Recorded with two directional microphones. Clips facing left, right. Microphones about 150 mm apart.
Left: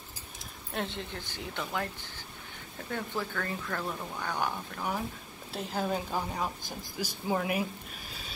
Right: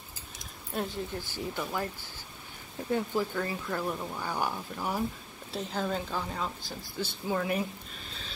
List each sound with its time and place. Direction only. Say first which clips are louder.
0.9 s speech: right 4 dB; 10° right (ahead or behind)
2.9 s speech: right 5 dB; 15° right (ahead or behind)
5.5 s a woman's voice: even; 5° left (ahead or behind)